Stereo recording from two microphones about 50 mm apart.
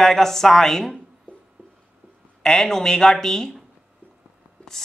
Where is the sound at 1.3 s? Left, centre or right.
Left.